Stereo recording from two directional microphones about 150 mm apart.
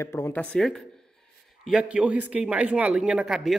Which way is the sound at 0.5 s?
5° left (ahead or behind).